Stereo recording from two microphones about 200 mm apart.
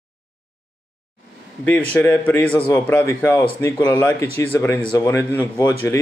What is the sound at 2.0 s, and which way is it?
Speech, 10° left (ahead or behind).